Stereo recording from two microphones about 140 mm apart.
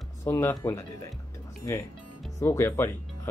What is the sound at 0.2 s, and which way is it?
Speech, 20° left (ahead or behind).